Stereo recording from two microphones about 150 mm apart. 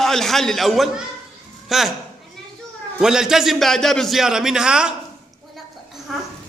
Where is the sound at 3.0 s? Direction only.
5° right (ahead or behind).